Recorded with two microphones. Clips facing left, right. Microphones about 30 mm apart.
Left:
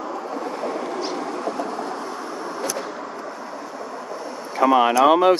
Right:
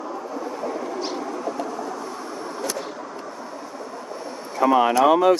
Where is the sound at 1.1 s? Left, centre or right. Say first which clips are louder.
Left 2 dB; left.